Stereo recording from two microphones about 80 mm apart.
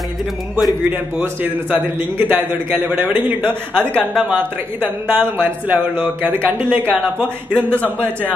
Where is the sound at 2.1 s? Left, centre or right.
Right.